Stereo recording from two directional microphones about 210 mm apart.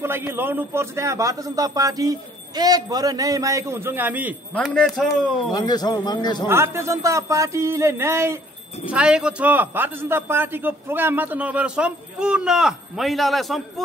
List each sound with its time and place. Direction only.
0.0 s a man's voice: 10° right (ahead or behind)
5.5 s speech: 20° left (ahead or behind)
6.4 s a man's voice: 10° right (ahead or behind)